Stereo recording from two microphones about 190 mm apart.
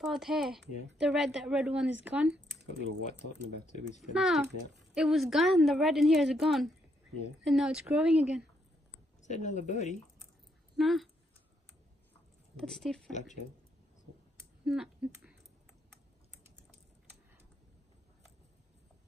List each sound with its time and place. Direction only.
0.0 s a woman's voice: centre (ahead or behind)
3.6 s speech: 40° left (ahead or behind)
4.1 s a woman's voice: 5° right (ahead or behind)
9.2 s speech: 40° left (ahead or behind)
10.8 s a woman's voice: centre (ahead or behind)
12.5 s a woman's voice: 5° left (ahead or behind)
14.6 s speech: 5° right (ahead or behind)